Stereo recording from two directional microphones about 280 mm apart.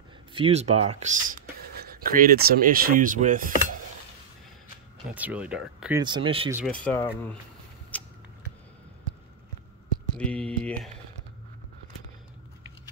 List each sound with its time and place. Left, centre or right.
0.3 s speech: right
5.1 s speech: centre
6.5 s speech: centre
7.9 s a sound: centre
10.1 s speech: centre